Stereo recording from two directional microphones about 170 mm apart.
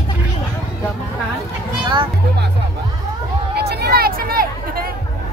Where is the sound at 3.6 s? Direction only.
70° right (ahead or behind).